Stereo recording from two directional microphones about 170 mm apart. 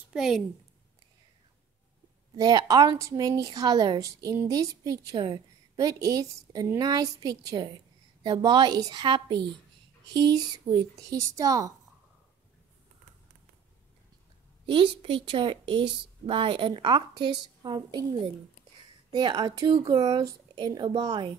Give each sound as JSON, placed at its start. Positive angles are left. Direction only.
{"t": 0.1, "sound": "a woman's voice", "side_deg": -5}
{"t": 2.3, "sound": "a woman's voice", "side_deg": -20}
{"t": 14.7, "sound": "a woman's voice", "side_deg": -30}